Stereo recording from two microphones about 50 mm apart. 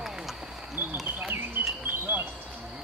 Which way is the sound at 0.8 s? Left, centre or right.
Right.